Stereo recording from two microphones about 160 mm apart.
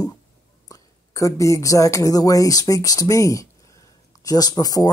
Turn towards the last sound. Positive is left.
turn(degrees=25)  # may be behind; listen again after turning